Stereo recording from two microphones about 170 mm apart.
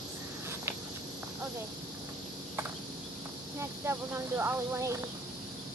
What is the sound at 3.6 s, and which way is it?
A child's voice, 15° right (ahead or behind).